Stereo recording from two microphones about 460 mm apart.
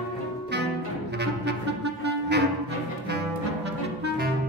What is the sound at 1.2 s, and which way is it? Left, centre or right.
Music, right.